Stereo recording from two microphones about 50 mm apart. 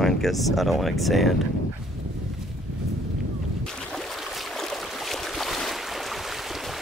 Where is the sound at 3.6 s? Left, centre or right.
Centre.